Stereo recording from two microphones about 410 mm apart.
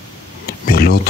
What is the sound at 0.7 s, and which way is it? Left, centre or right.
Speech, left.